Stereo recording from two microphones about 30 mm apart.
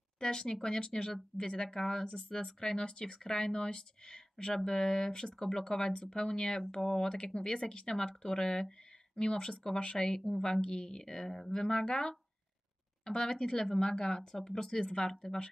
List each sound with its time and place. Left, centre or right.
0.2 s speech: left
1.8 s speech: centre
14.6 s speech: left